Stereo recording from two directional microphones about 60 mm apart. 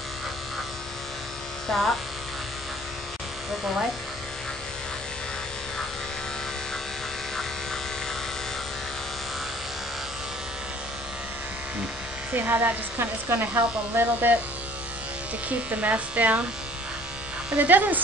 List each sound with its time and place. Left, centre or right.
1.7 s speech: centre
12.4 s a woman's voice: right
15.7 s speech: right
17.6 s speech: right